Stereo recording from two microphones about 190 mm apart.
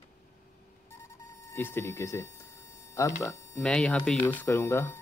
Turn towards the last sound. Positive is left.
turn(degrees=15)  # may be behind; listen again after turning